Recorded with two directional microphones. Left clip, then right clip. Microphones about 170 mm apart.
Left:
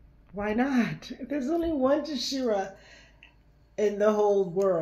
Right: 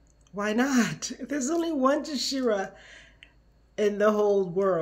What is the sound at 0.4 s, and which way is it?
Speech, 20° right (ahead or behind).